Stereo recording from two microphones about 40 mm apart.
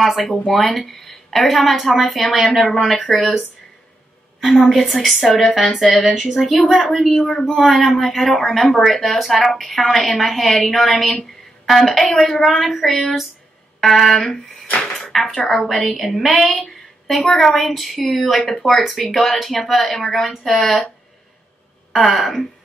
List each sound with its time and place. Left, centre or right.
0.0 s a woman's voice: centre
6.9 s a woman's voice: centre
7.9 s a woman's voice: centre
14.3 s speech: centre
15.0 s dishes: centre
15.3 s a woman's voice: left
15.6 s a woman's voice: centre
21.9 s a woman's voice: centre